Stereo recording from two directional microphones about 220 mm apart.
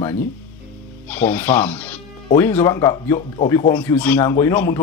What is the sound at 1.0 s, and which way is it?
Speech, 5° left (ahead or behind).